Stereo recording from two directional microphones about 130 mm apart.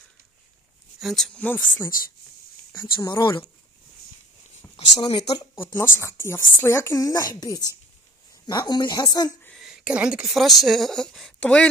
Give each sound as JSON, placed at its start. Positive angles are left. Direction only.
{"t": 0.9, "sound": "speech", "side_deg": 0}
{"t": 2.7, "sound": "speech", "side_deg": 25}
{"t": 4.9, "sound": "speech", "side_deg": 30}
{"t": 5.6, "sound": "speech", "side_deg": 15}
{"t": 9.6, "sound": "speech", "side_deg": -5}